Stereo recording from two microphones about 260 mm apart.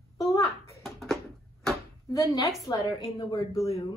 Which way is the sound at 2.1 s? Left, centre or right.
Centre.